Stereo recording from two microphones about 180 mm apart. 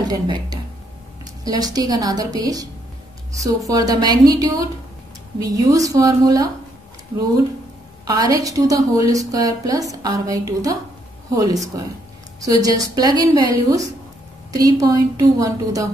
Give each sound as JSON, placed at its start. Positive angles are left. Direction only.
{"t": 0.0, "sound": "a woman's voice", "side_deg": -20}
{"t": 8.2, "sound": "a woman's voice", "side_deg": -20}